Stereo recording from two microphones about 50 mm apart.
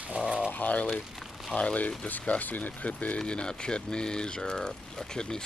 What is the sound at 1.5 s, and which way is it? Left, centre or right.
Speech, left.